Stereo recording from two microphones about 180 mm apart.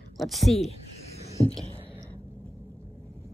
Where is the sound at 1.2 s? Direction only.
35° left (ahead or behind).